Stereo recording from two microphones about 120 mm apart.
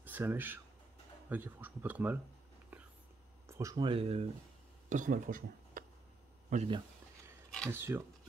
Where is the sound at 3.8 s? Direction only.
50° right (ahead or behind).